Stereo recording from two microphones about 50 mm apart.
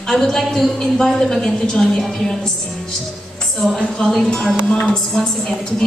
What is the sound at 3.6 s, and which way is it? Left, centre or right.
Speech, centre.